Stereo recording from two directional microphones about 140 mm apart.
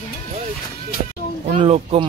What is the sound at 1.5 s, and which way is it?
Speech, 45° right (ahead or behind).